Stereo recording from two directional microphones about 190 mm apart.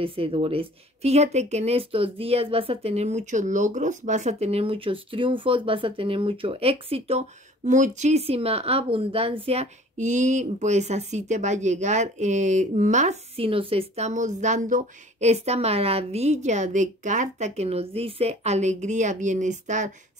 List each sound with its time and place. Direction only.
0.0 s speech: 30° right (ahead or behind)